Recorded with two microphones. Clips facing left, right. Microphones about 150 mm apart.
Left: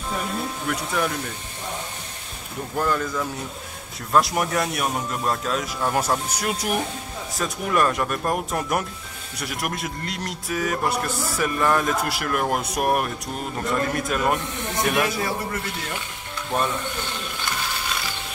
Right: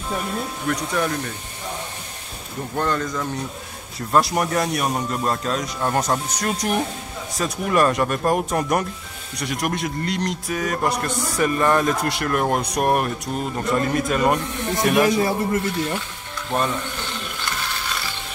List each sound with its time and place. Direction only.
0.7 s a man's voice: 5° left (ahead or behind)
2.7 s a man's voice: 5° left (ahead or behind)
15.0 s speech: 20° right (ahead or behind)